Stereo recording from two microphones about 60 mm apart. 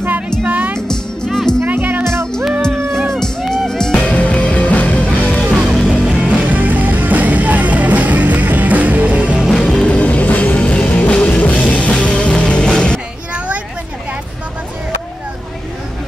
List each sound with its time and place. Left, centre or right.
0.4 s music: right
0.7 s music: centre
1.7 s music: right
3.2 s music: centre
4.1 s music: left
5.4 s music: centre
6.0 s music: right
9.8 s music: left